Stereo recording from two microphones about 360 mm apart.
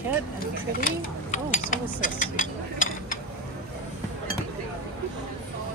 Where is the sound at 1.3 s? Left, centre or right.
Left.